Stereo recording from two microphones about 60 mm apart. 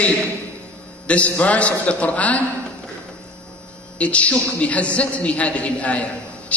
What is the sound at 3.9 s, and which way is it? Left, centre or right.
A woman's voice, left.